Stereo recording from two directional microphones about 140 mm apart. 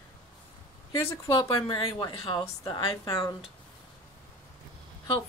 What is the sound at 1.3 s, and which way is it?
Speech, 30° left (ahead or behind).